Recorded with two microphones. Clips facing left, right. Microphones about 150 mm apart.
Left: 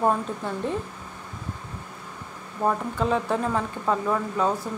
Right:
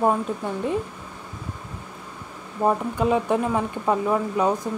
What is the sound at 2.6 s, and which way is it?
Speech, 15° right (ahead or behind).